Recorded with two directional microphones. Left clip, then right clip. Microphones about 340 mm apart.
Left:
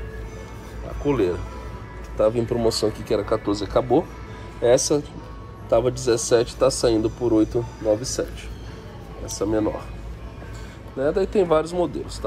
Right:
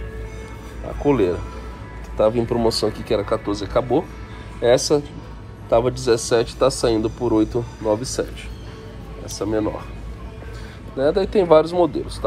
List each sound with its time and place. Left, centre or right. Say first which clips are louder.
1.0 s speech: right 3 dB; centre
2.6 s speech: right 1 dB; centre
3.3 s speech: right 1 dB; centre
11.0 s speech: right 3 dB; centre